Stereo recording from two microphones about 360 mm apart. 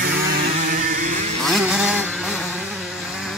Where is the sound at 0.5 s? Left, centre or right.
Right.